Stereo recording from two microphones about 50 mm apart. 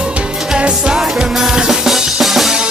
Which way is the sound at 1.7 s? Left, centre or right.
Centre.